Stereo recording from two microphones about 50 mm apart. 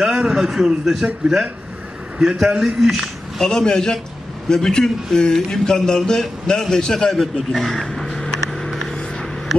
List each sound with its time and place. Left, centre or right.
0.0 s a man's voice: centre
2.3 s a man's voice: centre
3.4 s speech: centre
7.3 s vehicle: centre